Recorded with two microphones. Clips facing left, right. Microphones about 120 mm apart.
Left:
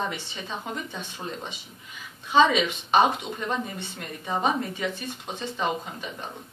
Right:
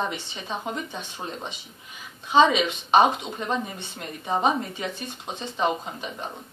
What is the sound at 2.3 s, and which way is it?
Speech, 20° right (ahead or behind).